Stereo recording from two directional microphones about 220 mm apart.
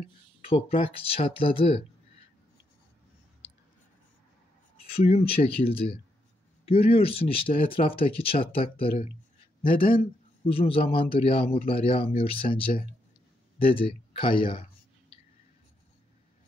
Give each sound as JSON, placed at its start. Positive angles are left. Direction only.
{"t": 0.4, "sound": "a man's voice", "side_deg": 25}
{"t": 4.9, "sound": "a man's voice", "side_deg": 25}
{"t": 13.6, "sound": "clicking", "side_deg": 25}